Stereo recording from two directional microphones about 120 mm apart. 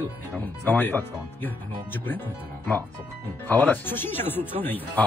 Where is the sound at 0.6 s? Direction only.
15° left (ahead or behind).